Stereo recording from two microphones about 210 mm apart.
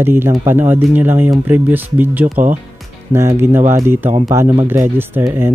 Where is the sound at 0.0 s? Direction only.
10° right (ahead or behind).